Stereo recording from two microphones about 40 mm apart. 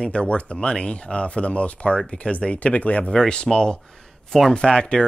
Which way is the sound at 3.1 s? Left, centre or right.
Left.